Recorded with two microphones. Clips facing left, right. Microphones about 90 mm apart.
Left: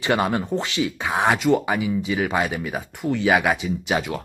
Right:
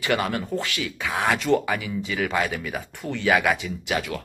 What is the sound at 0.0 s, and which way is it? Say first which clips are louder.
Speech: left 3 dB; 25° left (ahead or behind).